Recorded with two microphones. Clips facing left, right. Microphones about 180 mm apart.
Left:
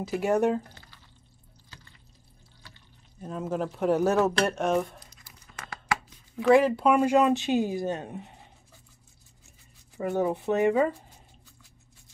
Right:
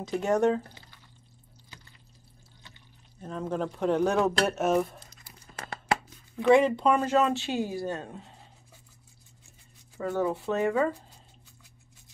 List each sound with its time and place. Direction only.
0.0 s speech: 10° left (ahead or behind)
3.2 s speech: 5° left (ahead or behind)
6.3 s speech: 5° left (ahead or behind)
9.9 s speech: 20° left (ahead or behind)